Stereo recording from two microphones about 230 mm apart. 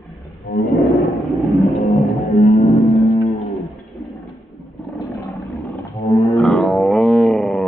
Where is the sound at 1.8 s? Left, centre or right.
Centre.